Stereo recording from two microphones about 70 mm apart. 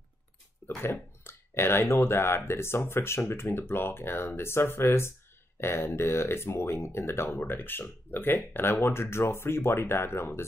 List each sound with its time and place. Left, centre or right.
0.7 s speech: left